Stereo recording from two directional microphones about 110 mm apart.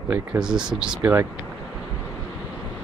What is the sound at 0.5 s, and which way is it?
Speech, 5° right (ahead or behind).